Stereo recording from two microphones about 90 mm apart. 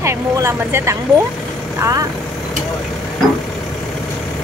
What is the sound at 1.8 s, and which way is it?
Speech, 40° right (ahead or behind).